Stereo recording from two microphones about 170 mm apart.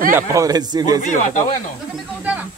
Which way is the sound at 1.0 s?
45° left (ahead or behind).